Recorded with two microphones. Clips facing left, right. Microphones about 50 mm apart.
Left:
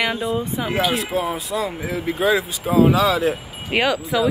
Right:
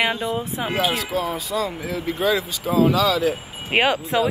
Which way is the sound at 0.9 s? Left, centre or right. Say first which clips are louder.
Left 2 dB; left.